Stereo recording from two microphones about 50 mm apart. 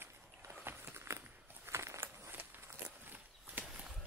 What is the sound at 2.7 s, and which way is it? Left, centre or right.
Walk, right.